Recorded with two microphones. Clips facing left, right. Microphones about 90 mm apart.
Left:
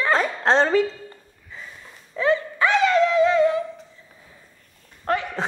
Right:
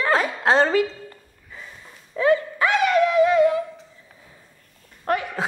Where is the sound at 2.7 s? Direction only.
25° left (ahead or behind).